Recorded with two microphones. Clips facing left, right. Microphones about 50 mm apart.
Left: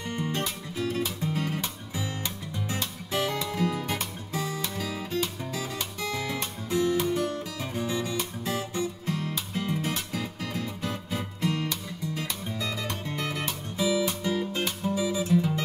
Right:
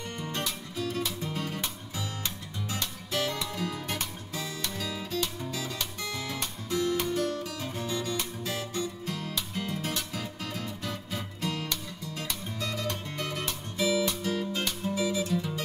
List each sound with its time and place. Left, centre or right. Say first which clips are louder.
0.1 s music: left 5 dB; left
12.8 s music: left 2 dB; left
13.7 s music: left 1 dB; centre
14.0 s music: left 2 dB; left